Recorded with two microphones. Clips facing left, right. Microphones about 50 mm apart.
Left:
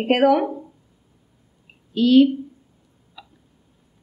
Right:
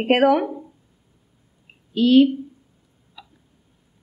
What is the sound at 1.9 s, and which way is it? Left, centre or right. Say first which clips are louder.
Speech: even; right.